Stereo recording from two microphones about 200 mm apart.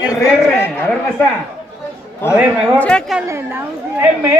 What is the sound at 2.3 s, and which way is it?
Speech, 10° right (ahead or behind).